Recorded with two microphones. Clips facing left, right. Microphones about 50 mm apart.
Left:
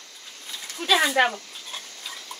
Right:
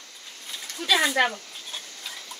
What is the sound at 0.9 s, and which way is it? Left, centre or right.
Speech, centre.